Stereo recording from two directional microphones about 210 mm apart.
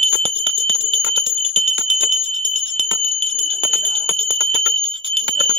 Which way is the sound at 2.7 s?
30° right (ahead or behind).